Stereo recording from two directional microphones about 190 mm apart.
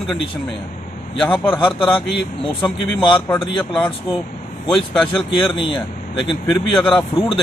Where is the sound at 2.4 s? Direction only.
25° left (ahead or behind).